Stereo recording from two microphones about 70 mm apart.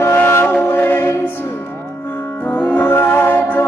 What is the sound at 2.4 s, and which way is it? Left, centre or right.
Music, left.